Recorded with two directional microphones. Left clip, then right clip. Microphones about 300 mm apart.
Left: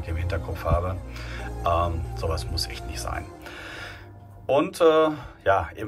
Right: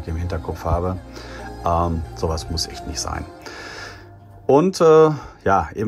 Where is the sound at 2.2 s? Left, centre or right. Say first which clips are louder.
Right 5 dB; centre.